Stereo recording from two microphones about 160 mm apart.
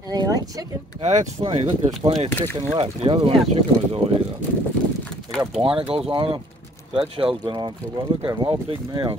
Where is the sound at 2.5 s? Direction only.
35° right (ahead or behind).